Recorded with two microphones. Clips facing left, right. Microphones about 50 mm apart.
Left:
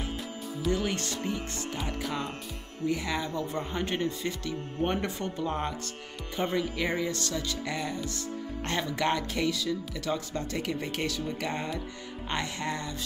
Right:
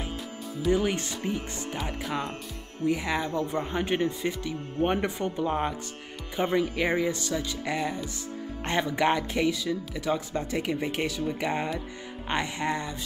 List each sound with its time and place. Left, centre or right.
0.7 s speech: centre